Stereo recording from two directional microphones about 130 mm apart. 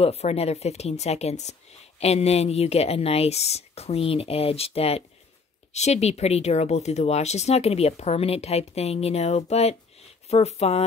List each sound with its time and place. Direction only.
0.0 s a woman's voice: 55° left (ahead or behind)